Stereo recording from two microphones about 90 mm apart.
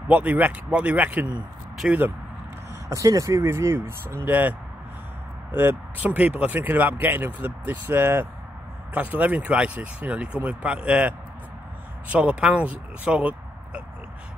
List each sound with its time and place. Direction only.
0.1 s speech: 15° right (ahead or behind)
2.9 s speech: 40° right (ahead or behind)
3.4 s speech: 25° right (ahead or behind)